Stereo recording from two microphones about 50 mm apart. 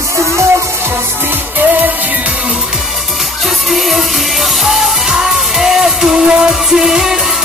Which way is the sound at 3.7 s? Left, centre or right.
Centre.